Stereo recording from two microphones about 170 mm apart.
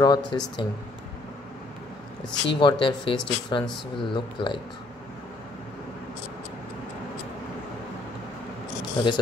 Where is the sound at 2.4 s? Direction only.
30° left (ahead or behind).